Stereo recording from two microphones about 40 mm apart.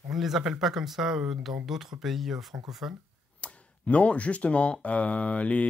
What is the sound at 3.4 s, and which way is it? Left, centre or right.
A man's voice, left.